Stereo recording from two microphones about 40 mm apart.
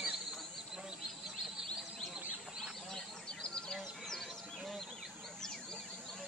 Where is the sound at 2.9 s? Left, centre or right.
Centre.